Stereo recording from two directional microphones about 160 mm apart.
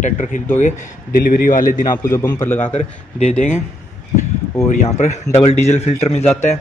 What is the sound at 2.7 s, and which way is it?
Speech, 40° left (ahead or behind).